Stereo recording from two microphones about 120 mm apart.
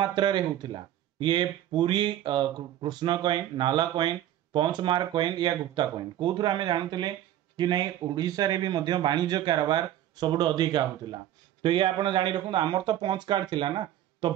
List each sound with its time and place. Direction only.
0.0 s speech: 40° right (ahead or behind)